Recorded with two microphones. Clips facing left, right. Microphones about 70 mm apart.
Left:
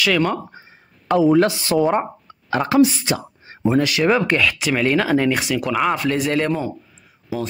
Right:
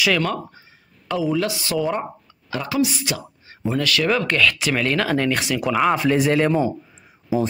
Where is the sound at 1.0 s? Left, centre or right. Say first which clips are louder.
Left 7 dB; left.